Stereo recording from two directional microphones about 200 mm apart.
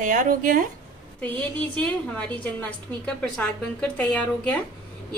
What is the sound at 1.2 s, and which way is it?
A woman's voice, 5° left (ahead or behind).